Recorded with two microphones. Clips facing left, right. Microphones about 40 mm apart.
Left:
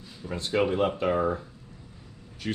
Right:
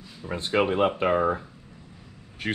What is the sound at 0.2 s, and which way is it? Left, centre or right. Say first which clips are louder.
Speech: right 2 dB; right.